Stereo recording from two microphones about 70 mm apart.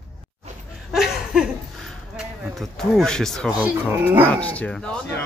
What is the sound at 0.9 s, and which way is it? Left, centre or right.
Laughter, centre.